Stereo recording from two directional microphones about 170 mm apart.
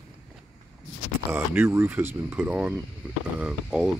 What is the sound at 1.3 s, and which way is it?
Speech, 10° right (ahead or behind).